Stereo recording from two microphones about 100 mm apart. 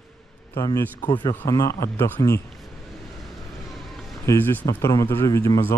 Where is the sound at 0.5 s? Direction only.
35° left (ahead or behind).